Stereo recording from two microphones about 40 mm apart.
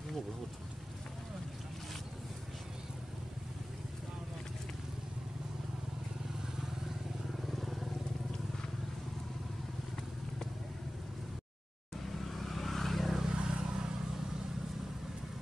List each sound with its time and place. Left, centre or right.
7.5 s vehicle: centre
12.2 s vehicle: centre
13.2 s vehicle: right